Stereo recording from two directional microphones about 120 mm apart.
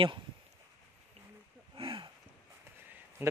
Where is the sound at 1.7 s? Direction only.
45° right (ahead or behind).